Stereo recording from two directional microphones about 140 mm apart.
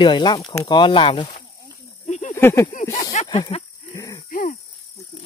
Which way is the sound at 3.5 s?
45° left (ahead or behind).